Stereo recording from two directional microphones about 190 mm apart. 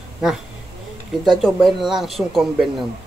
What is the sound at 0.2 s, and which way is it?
Speech, 5° right (ahead or behind).